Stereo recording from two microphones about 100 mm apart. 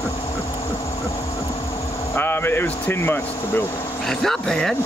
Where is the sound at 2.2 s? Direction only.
20° left (ahead or behind).